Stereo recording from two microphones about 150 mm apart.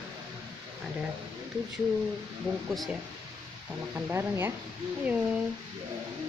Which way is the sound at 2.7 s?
Centre (ahead or behind).